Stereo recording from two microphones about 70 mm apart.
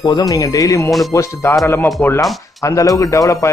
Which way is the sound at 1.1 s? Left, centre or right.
Left.